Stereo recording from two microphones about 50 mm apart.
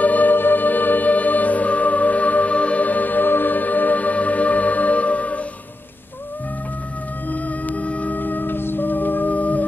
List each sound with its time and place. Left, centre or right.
0.0 s music: left
7.2 s music: left